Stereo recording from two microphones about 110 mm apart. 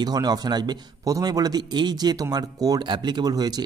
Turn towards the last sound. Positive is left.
turn(degrees=-35)  # may be behind; listen again after turning